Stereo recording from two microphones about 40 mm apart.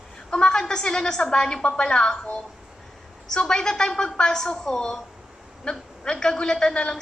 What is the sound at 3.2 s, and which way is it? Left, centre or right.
A woman's voice, centre.